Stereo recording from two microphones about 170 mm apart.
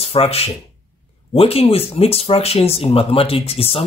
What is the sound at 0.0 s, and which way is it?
Speech, 35° left (ahead or behind).